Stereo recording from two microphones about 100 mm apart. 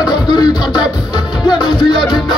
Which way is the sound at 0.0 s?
45° left (ahead or behind).